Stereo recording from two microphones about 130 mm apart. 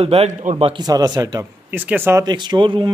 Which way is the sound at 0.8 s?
30° right (ahead or behind).